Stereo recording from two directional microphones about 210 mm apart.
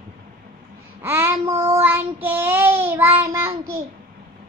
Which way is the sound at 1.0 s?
10° right (ahead or behind).